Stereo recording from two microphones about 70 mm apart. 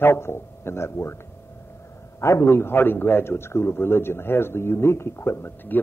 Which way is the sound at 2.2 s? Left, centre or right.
Left.